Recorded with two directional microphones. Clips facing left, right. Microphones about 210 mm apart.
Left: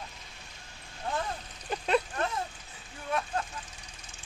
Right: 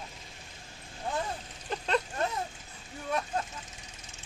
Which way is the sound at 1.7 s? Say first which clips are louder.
Left 1 dB; 10° left (ahead or behind).